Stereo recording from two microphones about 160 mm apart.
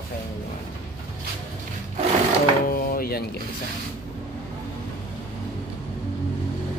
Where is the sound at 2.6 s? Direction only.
65° left (ahead or behind).